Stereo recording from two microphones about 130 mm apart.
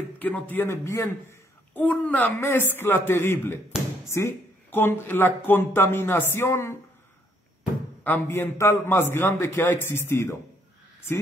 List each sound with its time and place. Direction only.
0.2 s speech: 10° left (ahead or behind)
8.0 s a man's voice: 15° left (ahead or behind)